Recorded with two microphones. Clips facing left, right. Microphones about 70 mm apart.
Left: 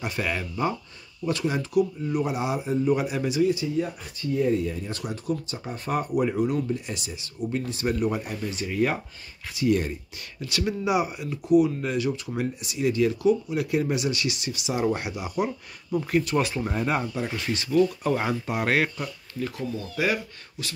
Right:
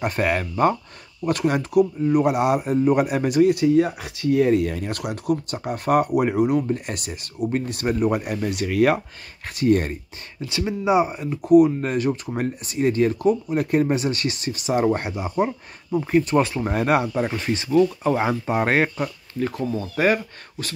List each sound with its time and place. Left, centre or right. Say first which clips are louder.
0.0 s speech: right 7 dB; right
9.5 s speech: right 4 dB; right
10.4 s speech: right 3 dB; right
11.4 s speech: right 6 dB; right
16.0 s speech: right 5 dB; right
16.7 s speech: right 8 dB; right
17.4 s speech: right 3 dB; right
18.5 s speech: right 4 dB; right